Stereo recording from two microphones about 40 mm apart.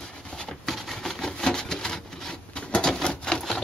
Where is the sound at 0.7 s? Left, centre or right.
Centre.